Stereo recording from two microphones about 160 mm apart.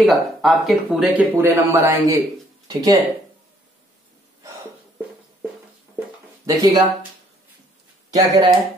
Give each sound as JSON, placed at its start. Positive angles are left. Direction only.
{"t": 0.0, "sound": "speech", "side_deg": 0}
{"t": 1.3, "sound": "a man's voice", "side_deg": -15}
{"t": 6.4, "sound": "speech", "side_deg": -20}
{"t": 8.1, "sound": "speech", "side_deg": -25}